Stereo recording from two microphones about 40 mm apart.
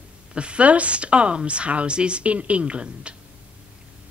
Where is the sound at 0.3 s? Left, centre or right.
Right.